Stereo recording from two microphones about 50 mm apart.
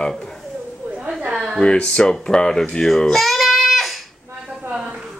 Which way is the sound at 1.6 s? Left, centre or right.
Centre.